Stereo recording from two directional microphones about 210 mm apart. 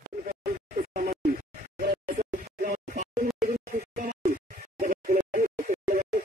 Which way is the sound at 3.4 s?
40° right (ahead or behind).